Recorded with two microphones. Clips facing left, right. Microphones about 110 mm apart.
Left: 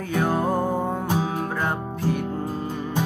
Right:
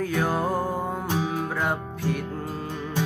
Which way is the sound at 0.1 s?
Centre (ahead or behind).